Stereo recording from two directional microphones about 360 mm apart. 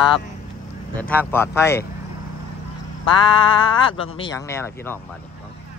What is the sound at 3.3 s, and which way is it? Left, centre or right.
Speech, centre.